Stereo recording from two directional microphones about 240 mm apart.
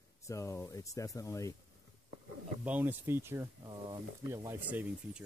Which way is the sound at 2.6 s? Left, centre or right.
Centre.